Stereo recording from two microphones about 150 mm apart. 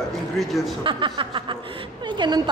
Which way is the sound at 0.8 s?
35° right (ahead or behind).